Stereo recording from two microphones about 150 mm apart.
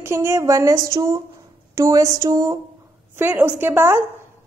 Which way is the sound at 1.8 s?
20° right (ahead or behind).